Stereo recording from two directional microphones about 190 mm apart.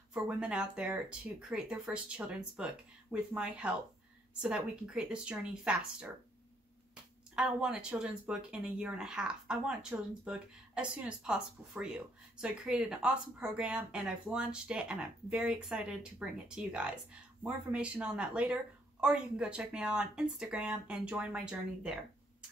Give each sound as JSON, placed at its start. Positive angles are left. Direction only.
{"t": 0.1, "sound": "speech", "side_deg": -5}
{"t": 7.3, "sound": "speech", "side_deg": -5}